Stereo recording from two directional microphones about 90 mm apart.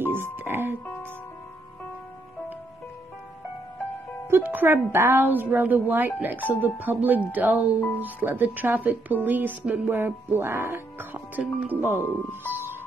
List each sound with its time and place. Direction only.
0.0 s music: 25° right (ahead or behind)
4.3 s speech: 20° right (ahead or behind)
11.3 s speech: 20° right (ahead or behind)
12.0 s speech: 25° left (ahead or behind)
12.4 s music: 25° right (ahead or behind)